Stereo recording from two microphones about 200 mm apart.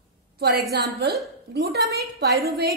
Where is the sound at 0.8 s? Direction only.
55° right (ahead or behind).